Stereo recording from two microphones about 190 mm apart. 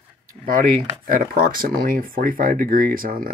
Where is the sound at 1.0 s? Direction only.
50° right (ahead or behind).